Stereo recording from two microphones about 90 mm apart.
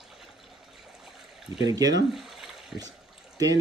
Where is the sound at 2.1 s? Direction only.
5° right (ahead or behind).